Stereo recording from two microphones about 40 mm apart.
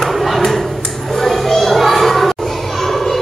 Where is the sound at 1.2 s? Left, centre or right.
Centre.